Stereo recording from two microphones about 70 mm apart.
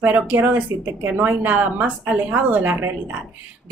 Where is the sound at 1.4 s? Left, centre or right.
Right.